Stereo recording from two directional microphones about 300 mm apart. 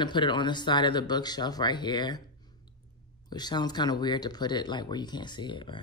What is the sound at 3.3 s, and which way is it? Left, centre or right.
Speech, centre.